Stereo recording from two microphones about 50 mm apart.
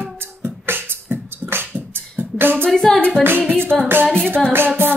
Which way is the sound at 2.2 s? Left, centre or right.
Right.